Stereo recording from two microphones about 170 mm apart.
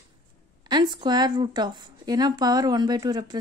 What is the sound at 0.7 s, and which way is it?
Speech, 25° right (ahead or behind).